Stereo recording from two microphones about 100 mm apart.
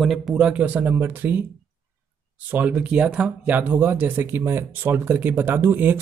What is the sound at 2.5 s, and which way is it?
Speech, 15° right (ahead or behind).